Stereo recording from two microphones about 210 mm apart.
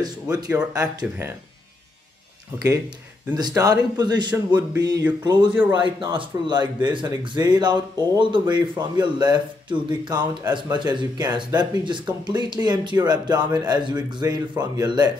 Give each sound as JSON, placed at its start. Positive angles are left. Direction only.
{"t": 0.0, "sound": "speech", "side_deg": -15}
{"t": 3.3, "sound": "speech", "side_deg": -20}